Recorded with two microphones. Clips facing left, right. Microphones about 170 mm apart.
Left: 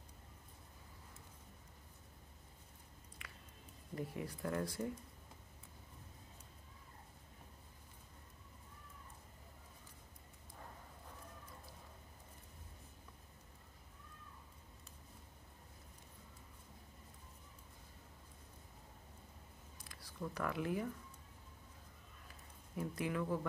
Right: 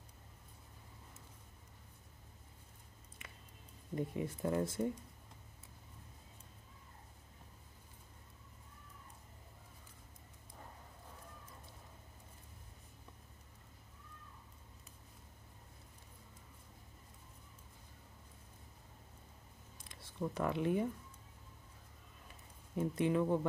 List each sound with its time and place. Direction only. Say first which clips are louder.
3.2 s music: right 1 dB; 25° right (ahead or behind)
3.9 s speech: right 5 dB; 20° right (ahead or behind)
19.8 s speech: right 5 dB; 25° right (ahead or behind)
22.8 s speech: right 7 dB; 25° right (ahead or behind)